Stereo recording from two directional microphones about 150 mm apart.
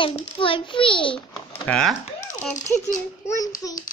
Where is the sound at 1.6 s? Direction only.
5° left (ahead or behind).